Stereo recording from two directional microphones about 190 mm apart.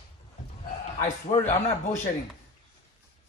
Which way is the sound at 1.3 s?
40° left (ahead or behind).